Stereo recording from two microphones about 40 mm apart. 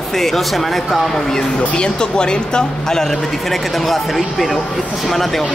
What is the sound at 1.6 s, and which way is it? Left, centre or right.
Speech, left.